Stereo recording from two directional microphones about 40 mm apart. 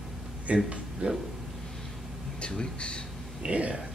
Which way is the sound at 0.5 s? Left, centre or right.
Right.